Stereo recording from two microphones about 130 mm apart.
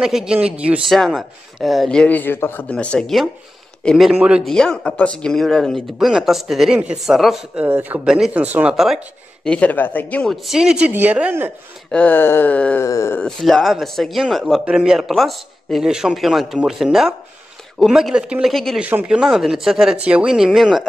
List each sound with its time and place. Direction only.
0.0 s speech: 5° right (ahead or behind)
7.6 s speech: 15° right (ahead or behind)
11.9 s a sound: 10° left (ahead or behind)
12.8 s speech: 25° left (ahead or behind)
13.2 s speech: 5° left (ahead or behind)
18.8 s speech: 10° right (ahead or behind)